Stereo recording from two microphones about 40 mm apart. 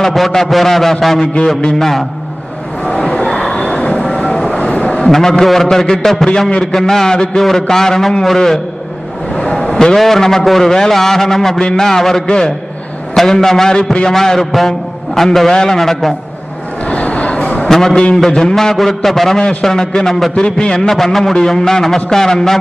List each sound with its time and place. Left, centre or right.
0.0 s a man's voice: centre
1.2 s a man's voice: left
1.8 s a man's voice: centre
2.8 s a sound: left
4.6 s vehicle: left
5.0 s a man's voice: centre
9.3 s vehicle: centre
9.7 s a sound: centre
9.9 s a man's voice: centre
15.8 s a man's voice: centre
16.8 s a sound: left
17.6 s a man's voice: centre
20.9 s a man's voice: centre